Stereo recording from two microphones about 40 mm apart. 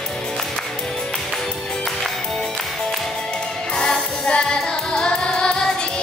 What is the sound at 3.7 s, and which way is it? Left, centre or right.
Music, centre.